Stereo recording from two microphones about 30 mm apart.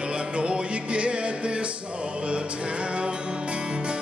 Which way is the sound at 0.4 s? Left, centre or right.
Right.